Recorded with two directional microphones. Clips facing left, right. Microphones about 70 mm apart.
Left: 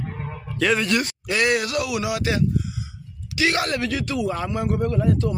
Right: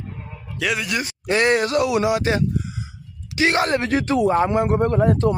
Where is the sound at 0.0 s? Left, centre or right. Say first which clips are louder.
Left 4 dB; left.